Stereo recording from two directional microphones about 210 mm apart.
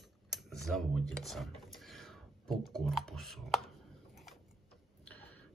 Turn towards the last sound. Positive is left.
turn(degrees=5)  # may be behind; listen again after turning